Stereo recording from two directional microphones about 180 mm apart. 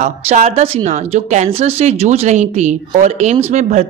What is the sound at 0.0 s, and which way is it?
A man's voice, 35° right (ahead or behind).